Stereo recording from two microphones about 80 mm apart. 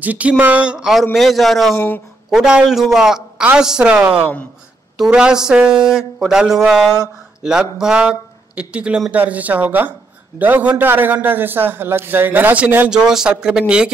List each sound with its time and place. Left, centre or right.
0.0 s a man's voice: centre
12.9 s speech: centre